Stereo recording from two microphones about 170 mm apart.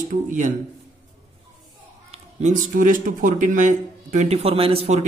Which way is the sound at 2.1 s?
45° right (ahead or behind).